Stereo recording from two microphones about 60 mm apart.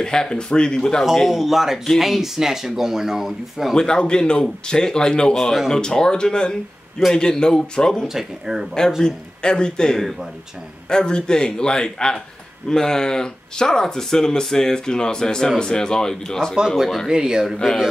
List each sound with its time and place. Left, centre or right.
0.0 s speech: centre
3.7 s speech: centre
5.3 s speech: centre
8.1 s speech: centre
9.0 s speech: centre
16.6 s speech: centre